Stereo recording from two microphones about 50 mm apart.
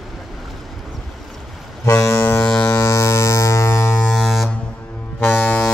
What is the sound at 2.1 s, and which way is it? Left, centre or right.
Ship, left.